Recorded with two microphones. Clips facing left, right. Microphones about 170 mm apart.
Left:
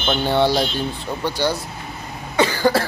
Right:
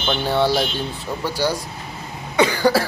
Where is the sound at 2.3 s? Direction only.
15° right (ahead or behind).